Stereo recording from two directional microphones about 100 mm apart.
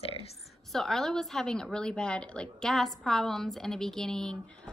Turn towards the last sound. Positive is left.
turn(degrees=5)  # may be behind; listen again after turning